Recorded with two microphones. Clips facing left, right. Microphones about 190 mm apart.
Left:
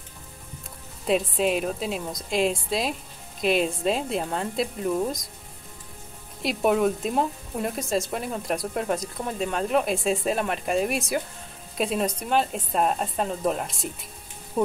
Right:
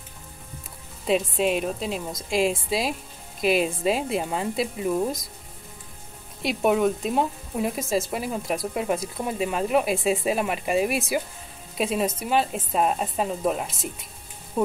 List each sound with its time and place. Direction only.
1.0 s speech: centre (ahead or behind)
6.4 s speech: centre (ahead or behind)